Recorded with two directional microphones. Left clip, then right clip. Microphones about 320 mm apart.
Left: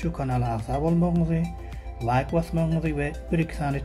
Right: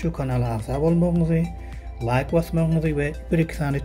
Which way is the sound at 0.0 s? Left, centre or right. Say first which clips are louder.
Right 2 dB; centre.